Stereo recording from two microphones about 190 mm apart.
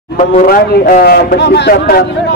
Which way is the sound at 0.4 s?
45° left (ahead or behind).